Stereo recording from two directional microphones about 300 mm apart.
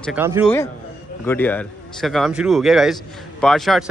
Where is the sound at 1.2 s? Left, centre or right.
Centre.